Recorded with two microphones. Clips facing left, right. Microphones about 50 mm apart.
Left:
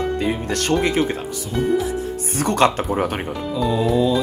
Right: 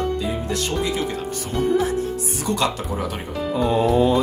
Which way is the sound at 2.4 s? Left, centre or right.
Left.